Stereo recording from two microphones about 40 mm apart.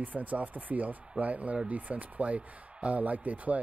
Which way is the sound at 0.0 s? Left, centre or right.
Right.